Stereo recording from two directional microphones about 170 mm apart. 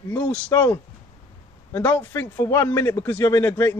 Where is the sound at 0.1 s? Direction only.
10° left (ahead or behind).